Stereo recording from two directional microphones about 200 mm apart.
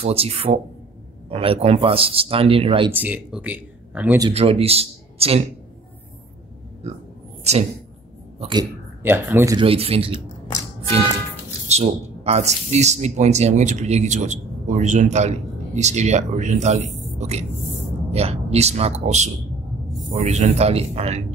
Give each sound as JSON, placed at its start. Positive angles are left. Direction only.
{"t": 0.0, "sound": "speech", "side_deg": -30}
{"t": 2.9, "sound": "speech", "side_deg": -10}
{"t": 4.3, "sound": "speech", "side_deg": -30}
{"t": 8.4, "sound": "speech", "side_deg": -25}
{"t": 9.0, "sound": "speech", "side_deg": -10}
{"t": 9.6, "sound": "speech", "side_deg": -30}
{"t": 11.6, "sound": "speech", "side_deg": -30}